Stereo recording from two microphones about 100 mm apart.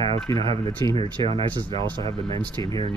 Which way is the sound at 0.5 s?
45° right (ahead or behind).